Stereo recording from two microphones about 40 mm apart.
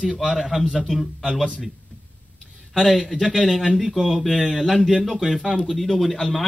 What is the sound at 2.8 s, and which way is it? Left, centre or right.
Speech, centre.